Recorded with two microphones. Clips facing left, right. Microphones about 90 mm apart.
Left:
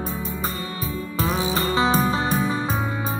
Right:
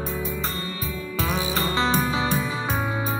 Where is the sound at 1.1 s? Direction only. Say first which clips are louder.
Left 2 dB; 30° left (ahead or behind).